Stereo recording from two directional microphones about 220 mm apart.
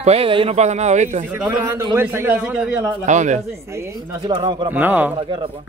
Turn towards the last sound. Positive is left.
turn(degrees=-10)  # may be behind; listen again after turning